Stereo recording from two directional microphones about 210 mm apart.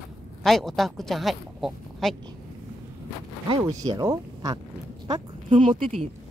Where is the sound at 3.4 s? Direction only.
20° right (ahead or behind).